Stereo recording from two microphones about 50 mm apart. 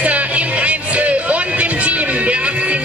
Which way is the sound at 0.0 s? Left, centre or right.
Right.